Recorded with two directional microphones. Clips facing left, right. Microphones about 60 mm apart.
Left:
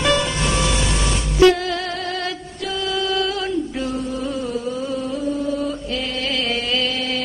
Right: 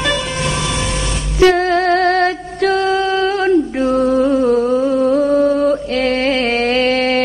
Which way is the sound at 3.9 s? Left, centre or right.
Right.